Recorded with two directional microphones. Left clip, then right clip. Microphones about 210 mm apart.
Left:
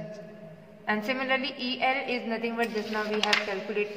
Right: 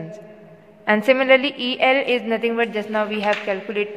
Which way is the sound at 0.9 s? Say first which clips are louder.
Right 13 dB; 50° right (ahead or behind).